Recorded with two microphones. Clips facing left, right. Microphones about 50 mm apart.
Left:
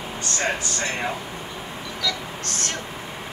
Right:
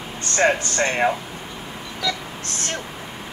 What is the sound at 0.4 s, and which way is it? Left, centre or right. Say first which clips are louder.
Speech: right 8 dB; right.